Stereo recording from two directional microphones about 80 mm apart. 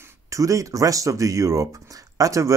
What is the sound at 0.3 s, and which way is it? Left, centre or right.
Speech, right.